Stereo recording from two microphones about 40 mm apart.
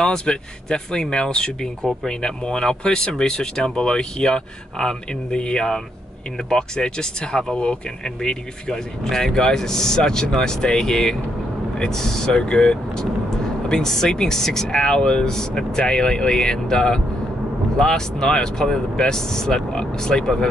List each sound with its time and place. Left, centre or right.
0.0 s speech: left